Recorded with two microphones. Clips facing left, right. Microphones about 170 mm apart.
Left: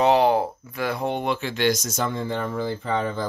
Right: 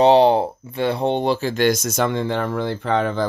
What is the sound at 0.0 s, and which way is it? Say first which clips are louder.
Speech: right 5 dB; 30° right (ahead or behind).